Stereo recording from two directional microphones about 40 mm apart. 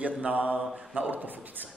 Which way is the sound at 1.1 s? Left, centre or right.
Right.